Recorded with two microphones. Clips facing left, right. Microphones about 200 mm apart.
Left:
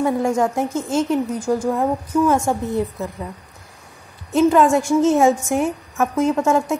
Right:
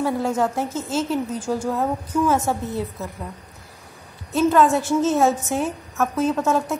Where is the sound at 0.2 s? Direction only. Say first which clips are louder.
Left 3 dB; 15° left (ahead or behind).